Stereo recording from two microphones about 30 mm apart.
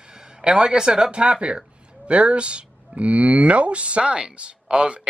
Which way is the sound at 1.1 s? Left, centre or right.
Right.